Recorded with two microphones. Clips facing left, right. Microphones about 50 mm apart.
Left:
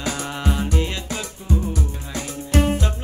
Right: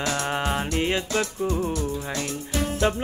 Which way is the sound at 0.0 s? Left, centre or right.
Centre.